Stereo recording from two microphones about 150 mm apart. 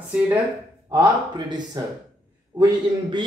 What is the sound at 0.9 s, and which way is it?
A man's voice, 30° right (ahead or behind).